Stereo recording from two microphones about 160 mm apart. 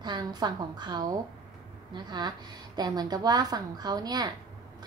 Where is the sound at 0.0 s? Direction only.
25° right (ahead or behind).